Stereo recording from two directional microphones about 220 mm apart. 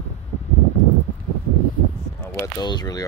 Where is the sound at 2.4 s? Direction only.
20° left (ahead or behind).